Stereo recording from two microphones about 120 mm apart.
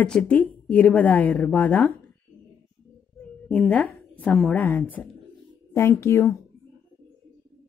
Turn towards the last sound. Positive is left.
turn(degrees=20)  # may be behind; listen again after turning